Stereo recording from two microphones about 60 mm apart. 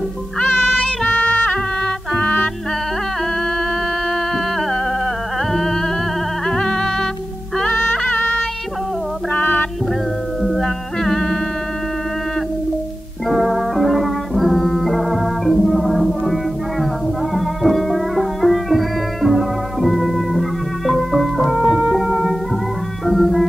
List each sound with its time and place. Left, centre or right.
0.4 s music: centre
1.0 s music: left
5.5 s music: centre; by 9.7 s left
10.4 s music: centre
13.3 s music: centre
23.0 s music: centre